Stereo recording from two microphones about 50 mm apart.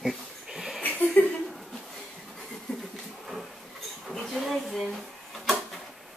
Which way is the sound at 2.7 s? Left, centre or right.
Centre.